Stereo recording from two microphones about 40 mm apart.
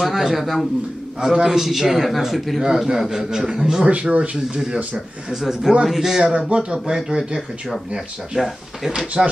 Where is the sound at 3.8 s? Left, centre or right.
Right.